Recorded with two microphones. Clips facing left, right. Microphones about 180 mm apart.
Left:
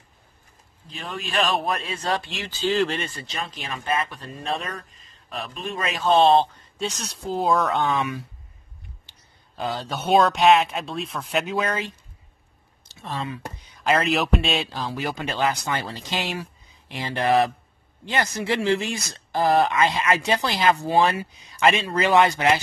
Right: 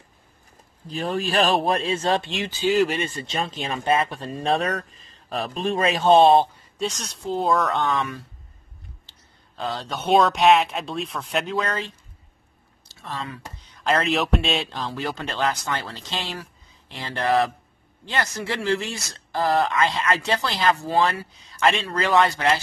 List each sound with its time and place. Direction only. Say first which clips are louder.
0.8 s speech: right 8 dB; 35° right (ahead or behind)
4.6 s speech: right 8 dB; 80° right
5.3 s a man's voice: right 6 dB; 35° right (ahead or behind)
6.1 s speech: right 1 dB; 15° right (ahead or behind)
6.8 s speech: right 1 dB; centre (ahead or behind)
9.6 s speech: left 1 dB; 5° left (ahead or behind)
11.5 s speech: left 1 dB; 15° left (ahead or behind)
13.8 s speech: left 1 dB; centre (ahead or behind); by 22.6 s 15° left (ahead or behind)